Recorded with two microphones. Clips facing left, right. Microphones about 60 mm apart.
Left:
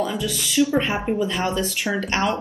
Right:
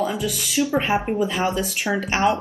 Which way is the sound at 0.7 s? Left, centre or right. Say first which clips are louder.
Right 1 dB; centre.